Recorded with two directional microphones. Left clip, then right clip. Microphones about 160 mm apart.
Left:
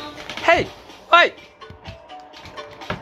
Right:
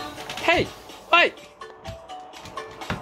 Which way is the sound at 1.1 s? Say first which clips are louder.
Left 4 dB; 15° right (ahead or behind).